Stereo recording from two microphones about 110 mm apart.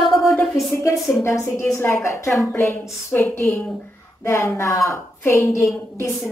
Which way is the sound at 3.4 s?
5° left (ahead or behind).